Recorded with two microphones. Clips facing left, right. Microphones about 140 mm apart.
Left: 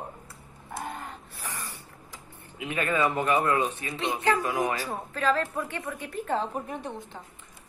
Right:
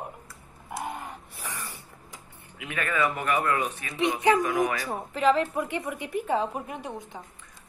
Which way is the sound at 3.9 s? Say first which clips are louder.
Right 4 dB; 15° right (ahead or behind).